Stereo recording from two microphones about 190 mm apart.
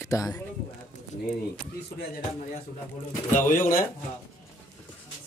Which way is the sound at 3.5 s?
45° left (ahead or behind).